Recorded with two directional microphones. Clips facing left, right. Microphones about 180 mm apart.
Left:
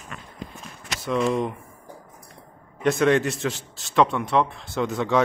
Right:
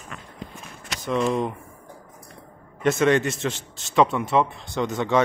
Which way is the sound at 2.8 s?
Centre (ahead or behind).